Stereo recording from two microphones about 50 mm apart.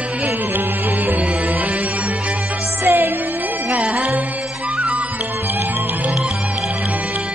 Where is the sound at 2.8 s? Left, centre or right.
Right.